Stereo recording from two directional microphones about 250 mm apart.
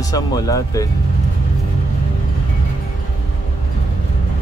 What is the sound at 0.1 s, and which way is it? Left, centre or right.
Speech, centre.